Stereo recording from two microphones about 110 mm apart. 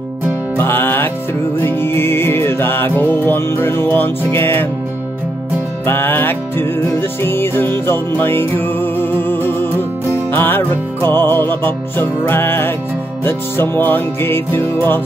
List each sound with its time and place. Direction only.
0.6 s music: 20° left (ahead or behind)
5.9 s music: 20° left (ahead or behind)